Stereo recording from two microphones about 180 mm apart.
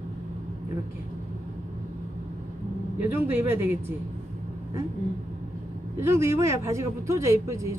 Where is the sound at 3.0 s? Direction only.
10° right (ahead or behind).